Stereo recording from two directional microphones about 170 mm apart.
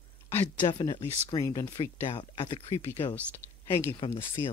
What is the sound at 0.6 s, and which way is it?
Speech, 25° left (ahead or behind).